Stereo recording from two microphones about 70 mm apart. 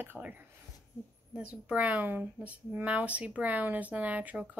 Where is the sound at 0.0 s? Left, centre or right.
Right.